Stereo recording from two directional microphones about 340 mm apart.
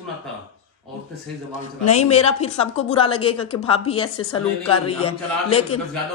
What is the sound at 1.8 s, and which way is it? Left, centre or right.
A woman's voice, centre.